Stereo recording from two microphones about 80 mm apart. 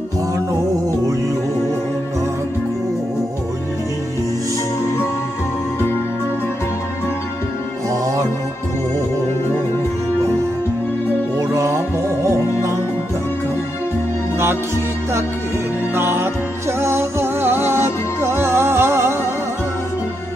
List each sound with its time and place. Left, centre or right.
7.9 s music: right
11.3 s music: right
15.9 s music: right